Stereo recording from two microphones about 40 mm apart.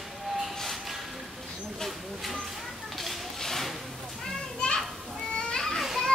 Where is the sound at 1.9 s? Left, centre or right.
Centre.